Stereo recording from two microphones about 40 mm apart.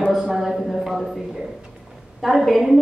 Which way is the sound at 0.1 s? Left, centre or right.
Centre.